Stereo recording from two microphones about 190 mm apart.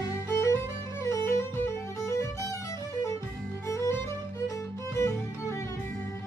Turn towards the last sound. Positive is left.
turn(degrees=15)  # may be behind; listen again after turning